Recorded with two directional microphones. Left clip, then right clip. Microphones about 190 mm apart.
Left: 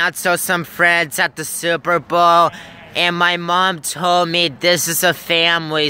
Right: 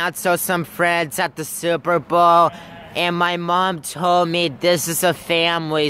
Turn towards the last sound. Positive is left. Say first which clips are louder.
# left 3 dB
turn(degrees=0)  # may be behind; listen again after turning